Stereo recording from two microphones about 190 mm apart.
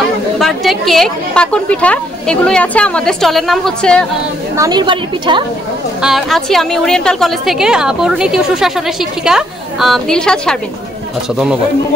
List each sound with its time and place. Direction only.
0.4 s a woman's voice: centre (ahead or behind)
4.6 s a woman's voice: 20° right (ahead or behind)
6.0 s a woman's voice: centre (ahead or behind)